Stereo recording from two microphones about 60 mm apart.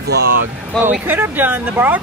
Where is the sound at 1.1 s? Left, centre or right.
Right.